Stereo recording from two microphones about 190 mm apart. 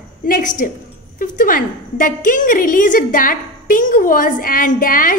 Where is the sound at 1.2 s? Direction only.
45° left (ahead or behind).